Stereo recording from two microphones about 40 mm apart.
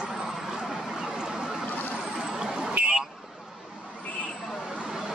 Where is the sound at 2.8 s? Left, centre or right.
Right.